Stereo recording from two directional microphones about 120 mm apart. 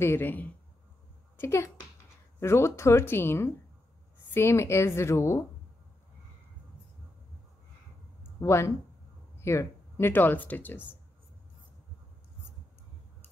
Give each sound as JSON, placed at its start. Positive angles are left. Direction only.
{"t": 0.0, "sound": "speech", "side_deg": 20}
{"t": 8.4, "sound": "speech", "side_deg": 20}